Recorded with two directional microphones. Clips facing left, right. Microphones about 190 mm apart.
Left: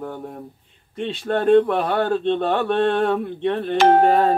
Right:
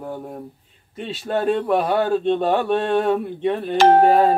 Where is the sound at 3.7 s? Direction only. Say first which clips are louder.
Right 1 dB; 40° right (ahead or behind).